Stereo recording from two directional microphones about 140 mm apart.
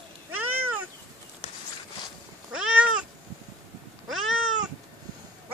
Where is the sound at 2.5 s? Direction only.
5° right (ahead or behind).